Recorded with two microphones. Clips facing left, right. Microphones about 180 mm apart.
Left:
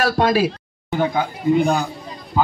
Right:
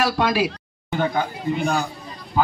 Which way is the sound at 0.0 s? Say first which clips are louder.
Left 3 dB; 40° left (ahead or behind).